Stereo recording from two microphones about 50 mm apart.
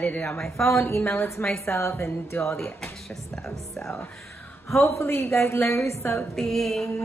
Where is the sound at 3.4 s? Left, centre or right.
Centre.